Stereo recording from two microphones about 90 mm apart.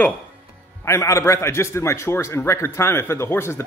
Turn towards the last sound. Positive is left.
turn(degrees=30)  # may be behind; listen again after turning